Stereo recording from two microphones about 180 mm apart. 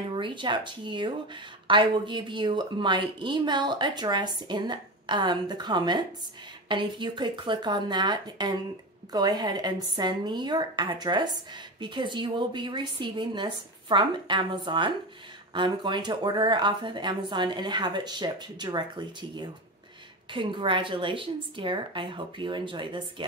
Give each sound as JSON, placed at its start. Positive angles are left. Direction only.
{"t": 0.1, "sound": "speech", "side_deg": -25}